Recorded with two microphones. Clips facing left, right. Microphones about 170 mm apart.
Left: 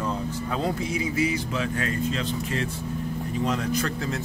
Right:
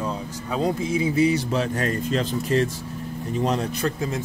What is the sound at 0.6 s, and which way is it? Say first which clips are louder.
Speech: right 6 dB; 25° right (ahead or behind).